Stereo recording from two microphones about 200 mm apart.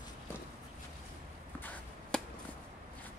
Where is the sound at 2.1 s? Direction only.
5° left (ahead or behind).